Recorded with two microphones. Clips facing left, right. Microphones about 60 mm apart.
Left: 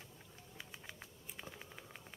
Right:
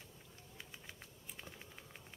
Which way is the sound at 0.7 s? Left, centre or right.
Centre.